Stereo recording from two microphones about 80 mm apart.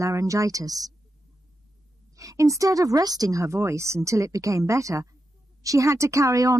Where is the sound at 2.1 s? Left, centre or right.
Right.